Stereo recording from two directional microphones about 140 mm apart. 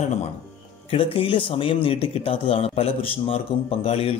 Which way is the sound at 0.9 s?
40° left (ahead or behind).